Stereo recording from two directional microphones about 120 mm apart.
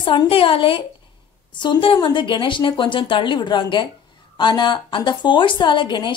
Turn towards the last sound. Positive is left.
turn(degrees=40)  # may be behind; listen again after turning